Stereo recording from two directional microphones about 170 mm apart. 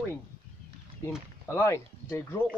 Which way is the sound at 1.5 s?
15° left (ahead or behind).